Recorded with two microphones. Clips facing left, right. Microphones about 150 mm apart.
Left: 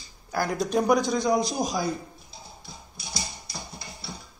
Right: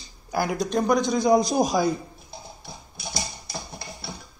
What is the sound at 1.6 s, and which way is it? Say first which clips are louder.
Speech: right 6 dB; 70° right (ahead or behind).